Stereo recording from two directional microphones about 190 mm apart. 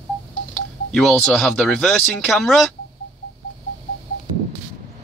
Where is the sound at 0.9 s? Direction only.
Centre (ahead or behind).